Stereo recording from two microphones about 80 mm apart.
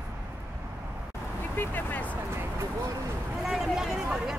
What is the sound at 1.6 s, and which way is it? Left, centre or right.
Vehicle, left.